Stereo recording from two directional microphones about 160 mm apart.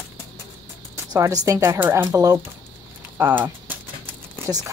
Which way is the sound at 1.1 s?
20° right (ahead or behind).